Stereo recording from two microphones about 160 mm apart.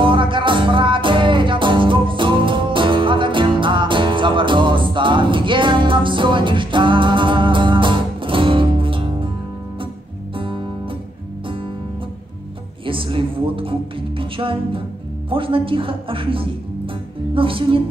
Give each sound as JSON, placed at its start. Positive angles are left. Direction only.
{"t": 0.0, "sound": "music", "side_deg": -30}
{"t": 10.3, "sound": "music", "side_deg": -35}
{"t": 12.8, "sound": "music", "side_deg": -35}